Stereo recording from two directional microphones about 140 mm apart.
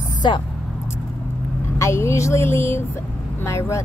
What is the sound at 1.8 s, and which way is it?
Speech, 20° left (ahead or behind).